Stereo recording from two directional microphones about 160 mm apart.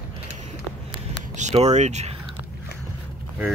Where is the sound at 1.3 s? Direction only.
45° right (ahead or behind).